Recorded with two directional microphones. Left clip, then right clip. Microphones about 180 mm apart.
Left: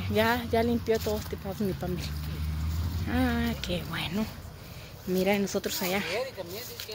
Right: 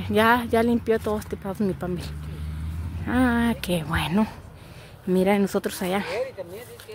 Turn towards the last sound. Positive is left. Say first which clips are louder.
# right 3 dB
turn(degrees=-30)  # may be behind; listen again after turning